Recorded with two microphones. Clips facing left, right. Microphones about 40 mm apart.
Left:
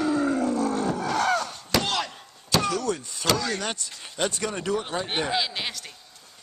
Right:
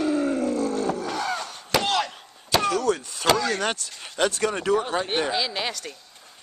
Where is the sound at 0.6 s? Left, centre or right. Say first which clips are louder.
Right 1 dB; centre.